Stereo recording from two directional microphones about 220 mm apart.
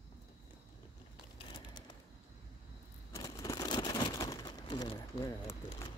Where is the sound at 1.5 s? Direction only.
20° left (ahead or behind).